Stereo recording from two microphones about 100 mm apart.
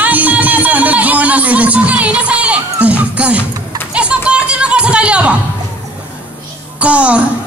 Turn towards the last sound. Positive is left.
turn(degrees=-10)  # may be behind; listen again after turning